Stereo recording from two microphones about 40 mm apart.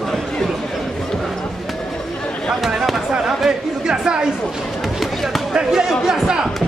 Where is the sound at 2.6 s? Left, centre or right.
Centre.